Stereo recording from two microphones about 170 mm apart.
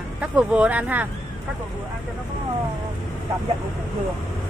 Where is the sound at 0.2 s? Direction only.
5° right (ahead or behind).